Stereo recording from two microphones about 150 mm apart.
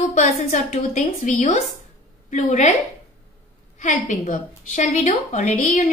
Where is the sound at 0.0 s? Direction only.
60° left (ahead or behind).